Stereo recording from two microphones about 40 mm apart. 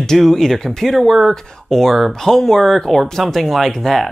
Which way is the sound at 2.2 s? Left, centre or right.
Centre.